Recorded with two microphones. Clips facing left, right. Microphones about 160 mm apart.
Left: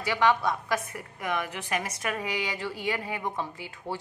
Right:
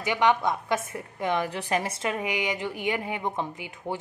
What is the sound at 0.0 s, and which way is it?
A woman's voice, 20° right (ahead or behind).